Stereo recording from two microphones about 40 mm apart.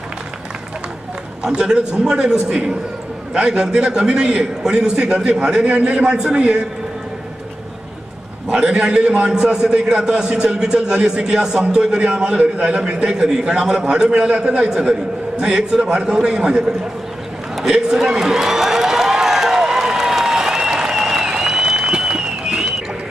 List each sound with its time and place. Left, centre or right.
1.4 s a man's voice: centre
3.3 s a man's voice: centre
8.5 s a man's voice: centre
17.7 s a sound: centre